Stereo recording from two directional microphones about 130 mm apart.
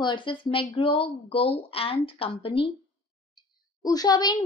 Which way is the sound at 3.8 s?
30° left (ahead or behind).